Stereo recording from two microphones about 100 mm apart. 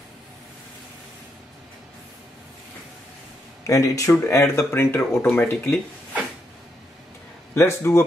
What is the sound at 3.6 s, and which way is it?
Speech, 35° left (ahead or behind).